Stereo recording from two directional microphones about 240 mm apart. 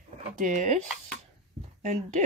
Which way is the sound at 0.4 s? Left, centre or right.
Right.